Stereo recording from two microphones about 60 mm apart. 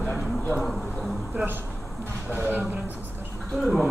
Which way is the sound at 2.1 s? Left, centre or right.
Right.